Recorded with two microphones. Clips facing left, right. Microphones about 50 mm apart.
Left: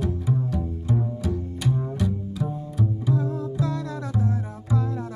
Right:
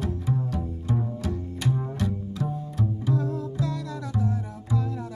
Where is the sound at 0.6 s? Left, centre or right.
Centre.